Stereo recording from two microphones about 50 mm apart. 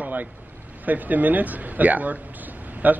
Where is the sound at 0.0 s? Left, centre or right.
Right.